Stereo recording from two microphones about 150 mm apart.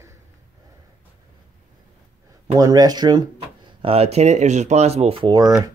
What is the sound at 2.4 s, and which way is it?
Speech, 20° right (ahead or behind).